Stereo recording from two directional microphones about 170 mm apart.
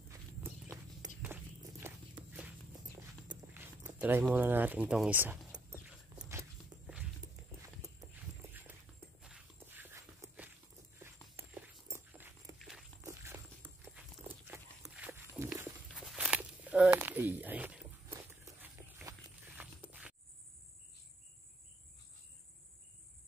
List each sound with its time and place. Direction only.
0.1 s walk: 15° right (ahead or behind)
2.2 s walk: 25° right (ahead or behind)
3.5 s speech: 10° right (ahead or behind)
5.9 s walk: 10° right (ahead or behind)
6.7 s walk: 25° right (ahead or behind)
8.1 s clip-clop: 10° right (ahead or behind)
9.2 s walk: 5° right (ahead or behind)
11.5 s dog: 10° right (ahead or behind)
12.5 s walk: centre (ahead or behind)
13.0 s walk: 15° right (ahead or behind)
13.8 s dog: 10° right (ahead or behind)
15.9 s walk: centre (ahead or behind)